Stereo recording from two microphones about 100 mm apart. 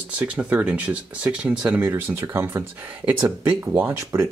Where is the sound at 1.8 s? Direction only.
25° right (ahead or behind).